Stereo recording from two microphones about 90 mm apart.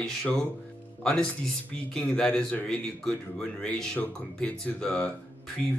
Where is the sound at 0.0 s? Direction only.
10° left (ahead or behind).